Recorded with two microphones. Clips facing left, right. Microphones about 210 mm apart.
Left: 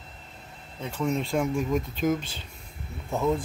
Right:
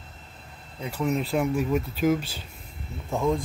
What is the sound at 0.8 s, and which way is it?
Speech, 5° right (ahead or behind).